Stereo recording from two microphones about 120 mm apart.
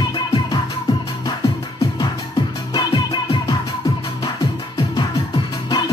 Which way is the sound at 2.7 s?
40° left (ahead or behind).